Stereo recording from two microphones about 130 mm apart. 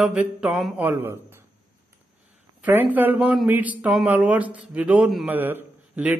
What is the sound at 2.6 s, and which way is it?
A man's voice, 10° right (ahead or behind).